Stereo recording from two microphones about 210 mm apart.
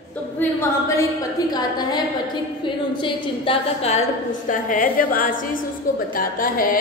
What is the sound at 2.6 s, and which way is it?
A woman's voice, 20° left (ahead or behind).